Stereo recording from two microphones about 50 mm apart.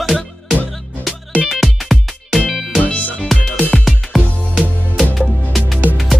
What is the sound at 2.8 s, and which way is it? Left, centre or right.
Music, centre.